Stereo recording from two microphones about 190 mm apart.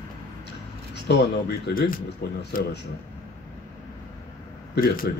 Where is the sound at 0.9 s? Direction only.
60° left (ahead or behind).